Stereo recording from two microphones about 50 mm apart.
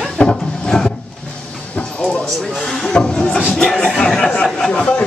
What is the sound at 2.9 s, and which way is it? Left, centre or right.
Speech, centre.